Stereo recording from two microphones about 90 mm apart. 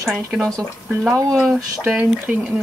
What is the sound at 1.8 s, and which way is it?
Speech, 10° right (ahead or behind).